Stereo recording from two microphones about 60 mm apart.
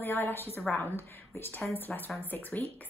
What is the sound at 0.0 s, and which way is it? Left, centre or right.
A woman's voice, left.